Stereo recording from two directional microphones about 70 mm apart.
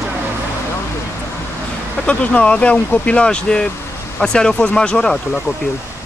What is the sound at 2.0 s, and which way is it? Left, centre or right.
Speech, centre.